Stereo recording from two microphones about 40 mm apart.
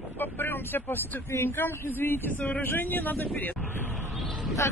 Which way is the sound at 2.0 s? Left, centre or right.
Left.